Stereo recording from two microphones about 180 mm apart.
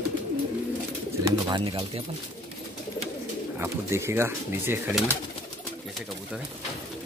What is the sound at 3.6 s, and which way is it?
A man's voice, 15° right (ahead or behind).